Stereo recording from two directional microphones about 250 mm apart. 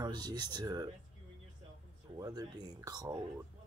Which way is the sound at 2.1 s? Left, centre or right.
Centre.